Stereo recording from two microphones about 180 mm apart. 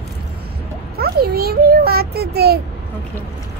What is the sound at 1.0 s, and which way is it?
A child's voice, 60° right (ahead or behind).